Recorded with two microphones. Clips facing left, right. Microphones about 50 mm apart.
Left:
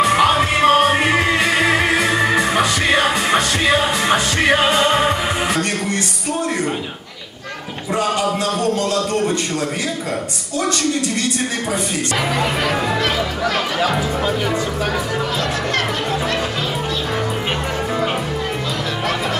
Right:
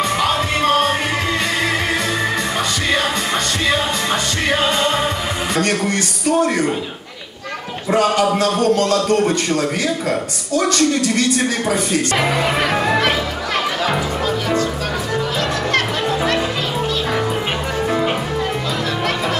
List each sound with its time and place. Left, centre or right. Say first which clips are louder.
0.0 s music: left 4 dB; centre
5.6 s music: right 3 dB; right
7.9 s a sound: right 4 dB; right
10.6 s speech: right 2 dB; right